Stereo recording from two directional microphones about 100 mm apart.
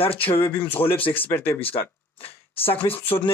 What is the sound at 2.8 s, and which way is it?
Speech, 70° left (ahead or behind).